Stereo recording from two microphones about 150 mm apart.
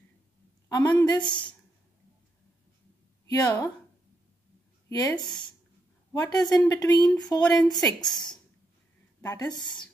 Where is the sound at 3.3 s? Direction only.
25° left (ahead or behind).